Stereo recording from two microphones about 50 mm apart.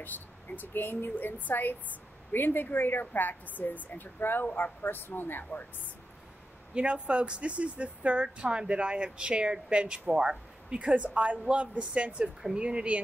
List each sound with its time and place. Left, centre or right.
0.6 s a woman's voice: left
6.7 s speech: right